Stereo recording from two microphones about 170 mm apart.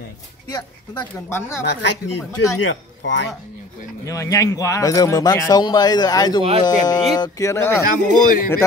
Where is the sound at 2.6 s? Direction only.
90° left.